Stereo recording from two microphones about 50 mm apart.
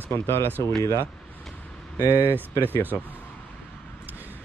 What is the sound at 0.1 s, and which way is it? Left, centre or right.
Speech, left.